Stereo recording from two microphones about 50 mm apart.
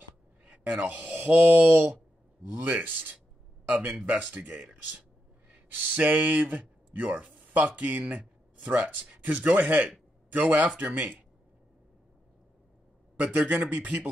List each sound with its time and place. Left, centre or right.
0.5 s speech: right
4.0 s speech: right
5.5 s a man's voice: right
13.2 s a man's voice: right